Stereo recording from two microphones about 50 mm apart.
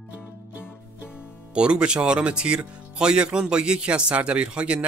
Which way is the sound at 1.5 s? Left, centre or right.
Right.